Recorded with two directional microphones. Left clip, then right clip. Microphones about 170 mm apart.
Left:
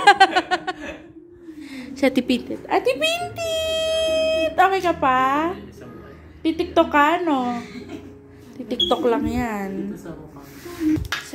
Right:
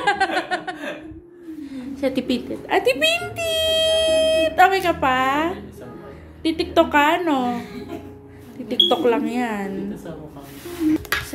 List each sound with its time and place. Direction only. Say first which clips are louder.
0.0 s a sound: left 6 dB; 60° left (ahead or behind); by 2.2 s 45° left (ahead or behind)
2.2 s speech: left 1 dB; 30° left (ahead or behind)
8.6 s speech: right 3 dB; 25° left (ahead or behind)